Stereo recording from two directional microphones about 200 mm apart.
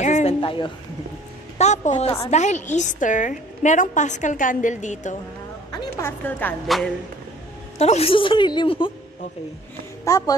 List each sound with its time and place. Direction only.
0.0 s a sound: 35° left (ahead or behind)
1.6 s a woman's voice: 35° left (ahead or behind)
5.7 s a woman's voice: 15° left (ahead or behind)
7.8 s a woman's voice: 30° left (ahead or behind)
10.0 s speech: 15° left (ahead or behind)